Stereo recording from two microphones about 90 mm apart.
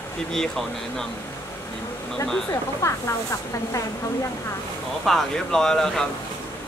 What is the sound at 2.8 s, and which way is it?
Speech, 30° left (ahead or behind).